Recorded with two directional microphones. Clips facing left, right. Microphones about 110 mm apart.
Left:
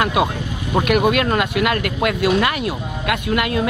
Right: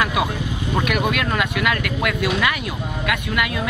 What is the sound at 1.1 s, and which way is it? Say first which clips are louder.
Speech: left 4 dB; 40° left (ahead or behind).